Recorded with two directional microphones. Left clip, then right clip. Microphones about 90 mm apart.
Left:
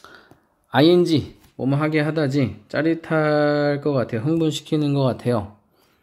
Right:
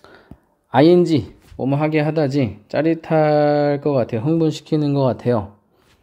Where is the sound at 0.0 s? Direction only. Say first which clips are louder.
Even; 30° right (ahead or behind).